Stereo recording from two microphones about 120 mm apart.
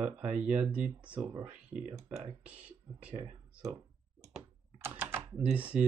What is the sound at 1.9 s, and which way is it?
Speech, 25° right (ahead or behind).